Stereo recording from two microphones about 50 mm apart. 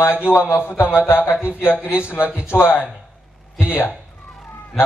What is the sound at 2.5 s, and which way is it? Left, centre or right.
Speech, left.